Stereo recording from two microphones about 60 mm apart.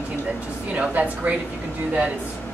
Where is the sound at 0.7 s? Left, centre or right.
Right.